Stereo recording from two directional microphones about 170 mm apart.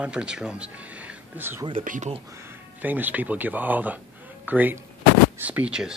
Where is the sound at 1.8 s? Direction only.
45° right (ahead or behind).